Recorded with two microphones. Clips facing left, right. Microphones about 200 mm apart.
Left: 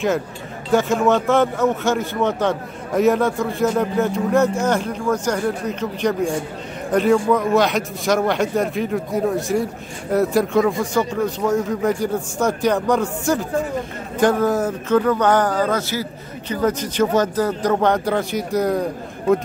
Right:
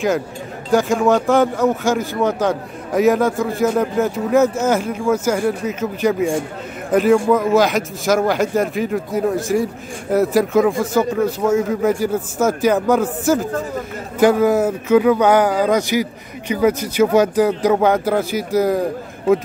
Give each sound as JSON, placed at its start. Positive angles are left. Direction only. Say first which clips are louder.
{"t": 0.7, "sound": "speech", "louder": "right 2 dB", "side_deg": 0}